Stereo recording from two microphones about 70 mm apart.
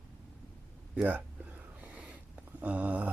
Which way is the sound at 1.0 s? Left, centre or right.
Right.